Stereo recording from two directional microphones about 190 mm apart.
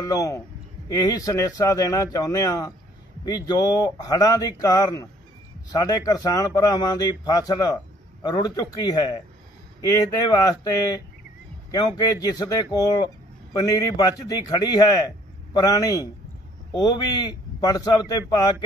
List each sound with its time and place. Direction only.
0.1 s a man's voice: 20° left (ahead or behind)
12.0 s a man's voice: 20° left (ahead or behind)